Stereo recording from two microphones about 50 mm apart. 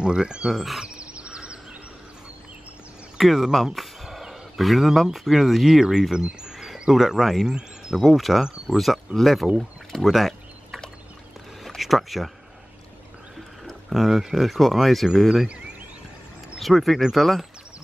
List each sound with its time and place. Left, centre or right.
0.0 s speech: centre
0.5 s speech: centre
0.8 s a sound: right
3.2 s speech: centre
8.0 s speech: centre
10.0 s a sound: centre
13.8 s speech: centre
16.5 s speech: centre